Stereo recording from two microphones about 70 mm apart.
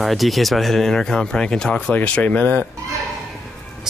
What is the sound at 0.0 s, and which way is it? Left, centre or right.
Speech, centre.